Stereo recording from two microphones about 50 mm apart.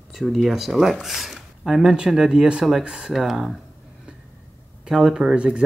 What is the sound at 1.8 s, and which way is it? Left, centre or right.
Speech, centre.